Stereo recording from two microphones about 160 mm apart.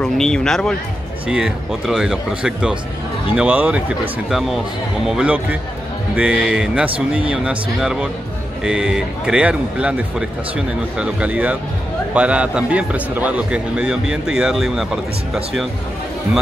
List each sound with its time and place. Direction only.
0.0 s a man's voice: 5° left (ahead or behind)
1.2 s a man's voice: 5° right (ahead or behind)